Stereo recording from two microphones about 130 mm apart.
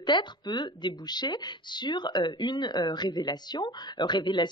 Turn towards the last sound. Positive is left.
turn(degrees=35)  # may be behind; listen again after turning